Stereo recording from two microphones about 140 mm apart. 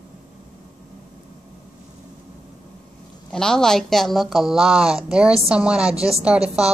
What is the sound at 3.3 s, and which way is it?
A woman's voice, 5° left (ahead or behind).